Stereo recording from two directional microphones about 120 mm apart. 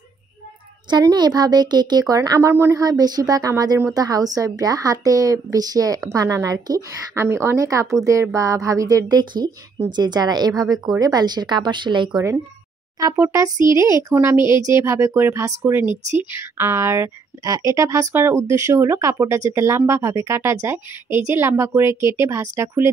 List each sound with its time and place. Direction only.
0.8 s a woman's voice: 35° right (ahead or behind)
13.0 s a woman's voice: 25° right (ahead or behind)
15.9 s speech: 75° right (ahead or behind)
16.2 s a woman's voice: 20° right (ahead or behind)